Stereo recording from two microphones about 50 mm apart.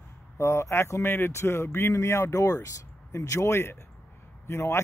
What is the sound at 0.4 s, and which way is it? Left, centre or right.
Speech, left.